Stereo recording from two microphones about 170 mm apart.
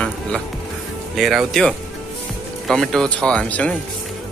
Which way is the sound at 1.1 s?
Centre (ahead or behind).